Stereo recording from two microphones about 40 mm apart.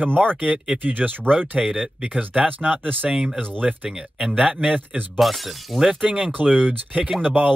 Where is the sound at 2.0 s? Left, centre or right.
Right.